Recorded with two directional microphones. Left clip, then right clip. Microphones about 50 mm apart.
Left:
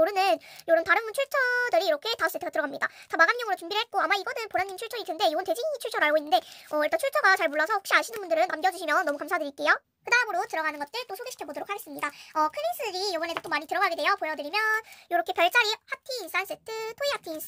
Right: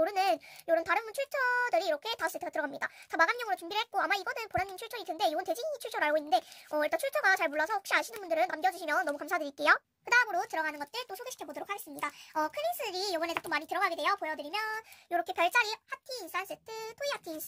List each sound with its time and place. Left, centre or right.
0.0 s a child's voice: centre
6.8 s a child's voice: centre
9.2 s a child's voice: centre
13.7 s a child's voice: left